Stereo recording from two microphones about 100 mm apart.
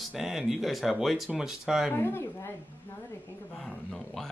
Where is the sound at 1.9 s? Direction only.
20° left (ahead or behind).